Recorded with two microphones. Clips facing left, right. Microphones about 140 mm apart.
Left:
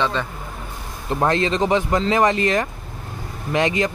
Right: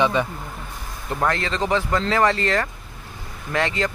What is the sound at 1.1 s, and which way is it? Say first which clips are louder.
Speech: left 4 dB; 20° left (ahead or behind).